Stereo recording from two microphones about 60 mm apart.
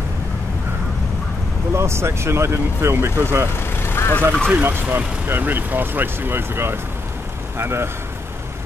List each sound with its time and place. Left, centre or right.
1.8 s speech: right
3.5 s vehicle: left
4.2 s speech: left
4.6 s speech: right